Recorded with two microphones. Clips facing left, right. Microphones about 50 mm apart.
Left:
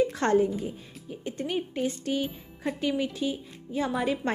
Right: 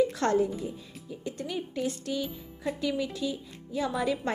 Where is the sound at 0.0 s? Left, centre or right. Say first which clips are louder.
Left 2 dB; left.